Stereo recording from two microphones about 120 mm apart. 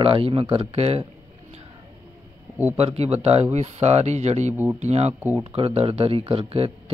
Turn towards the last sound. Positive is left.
turn(degrees=-50)  # may be behind; listen again after turning